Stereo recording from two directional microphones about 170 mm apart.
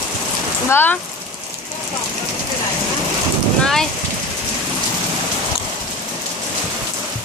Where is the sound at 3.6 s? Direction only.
Centre (ahead or behind).